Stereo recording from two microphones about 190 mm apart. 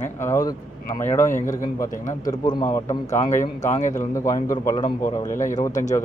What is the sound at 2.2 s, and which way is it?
Speech, 20° left (ahead or behind).